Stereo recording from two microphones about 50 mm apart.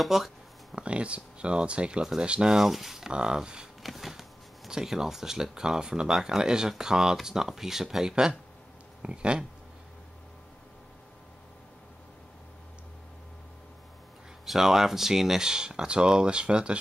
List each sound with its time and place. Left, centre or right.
0.0 s a sound: centre
0.7 s speech: right
2.5 s speech: centre
3.1 s speech: centre
3.8 s speech: centre; by 9.4 s right
14.4 s speech: centre